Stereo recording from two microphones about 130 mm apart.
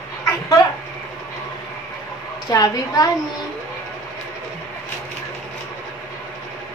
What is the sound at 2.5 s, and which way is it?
Speech, 30° left (ahead or behind).